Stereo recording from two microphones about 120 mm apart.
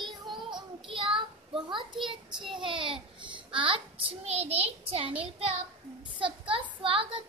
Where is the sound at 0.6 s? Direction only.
45° right (ahead or behind).